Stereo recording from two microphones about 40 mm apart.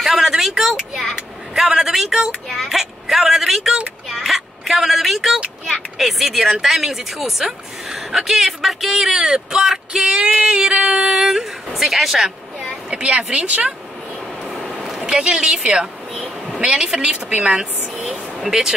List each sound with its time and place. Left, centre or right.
0.0 s a sound: centre
0.4 s a woman's voice: centre
10.1 s a woman's voice: right
11.1 s speech: centre
12.9 s speech: right
15.0 s a woman's voice: right
17.9 s a sound: centre